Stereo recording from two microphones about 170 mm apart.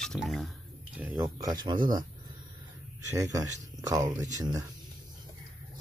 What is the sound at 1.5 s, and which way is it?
Speech, 30° right (ahead or behind).